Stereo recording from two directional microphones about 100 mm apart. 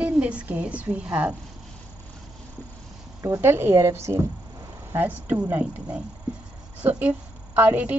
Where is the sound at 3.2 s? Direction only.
25° right (ahead or behind).